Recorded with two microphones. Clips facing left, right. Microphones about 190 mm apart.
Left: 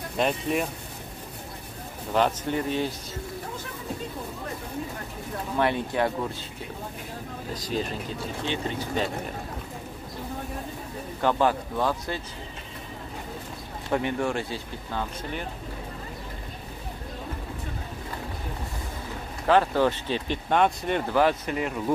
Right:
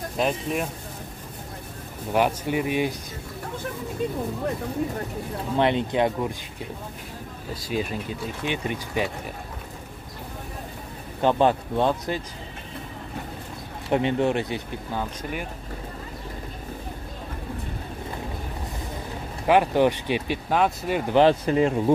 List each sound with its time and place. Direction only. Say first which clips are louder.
0.2 s speech: even; centre (ahead or behind)
2.1 s speech: right 2 dB; 10° right (ahead or behind)
5.6 s speech: right 3 dB; 20° right (ahead or behind)
7.5 s speech: right 2 dB; 10° right (ahead or behind)
11.1 s speech: right 3 dB; 20° right (ahead or behind)
13.8 s speech: right 4 dB; 20° right (ahead or behind)
19.4 s speech: right 2 dB; 15° right (ahead or behind)
21.1 s speech: right 7 dB; 25° right (ahead or behind)